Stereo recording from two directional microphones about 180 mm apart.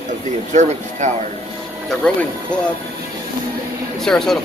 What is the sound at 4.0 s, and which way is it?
Speech, centre (ahead or behind).